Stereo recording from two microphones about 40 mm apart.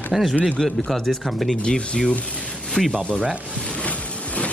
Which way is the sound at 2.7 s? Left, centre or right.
Centre.